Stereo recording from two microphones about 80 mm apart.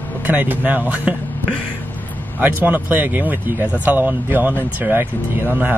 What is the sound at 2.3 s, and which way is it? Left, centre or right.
Speech, right.